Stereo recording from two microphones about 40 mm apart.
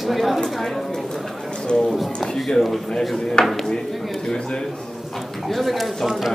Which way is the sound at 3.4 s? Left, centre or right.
Left.